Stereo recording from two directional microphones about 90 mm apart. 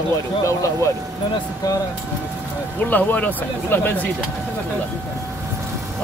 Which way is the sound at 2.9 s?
20° left (ahead or behind).